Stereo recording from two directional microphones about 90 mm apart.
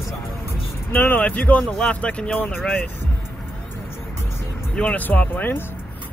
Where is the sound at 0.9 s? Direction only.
20° left (ahead or behind).